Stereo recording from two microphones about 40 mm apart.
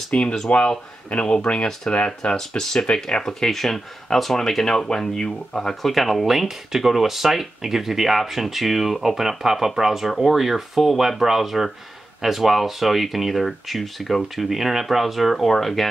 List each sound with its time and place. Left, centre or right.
0.1 s speech: left
2.3 s speech: centre
5.8 s speech: centre